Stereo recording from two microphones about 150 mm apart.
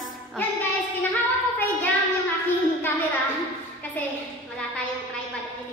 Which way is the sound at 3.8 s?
10° left (ahead or behind).